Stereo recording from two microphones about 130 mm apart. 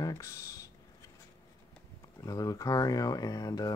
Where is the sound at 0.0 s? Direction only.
25° left (ahead or behind).